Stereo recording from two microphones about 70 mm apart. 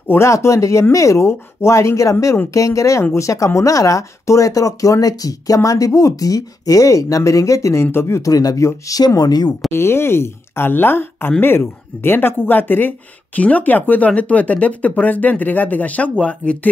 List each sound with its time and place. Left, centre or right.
0.1 s speech: left
8.3 s speech: left
9.2 s speech: left
9.7 s speech: left; by 16.5 s centre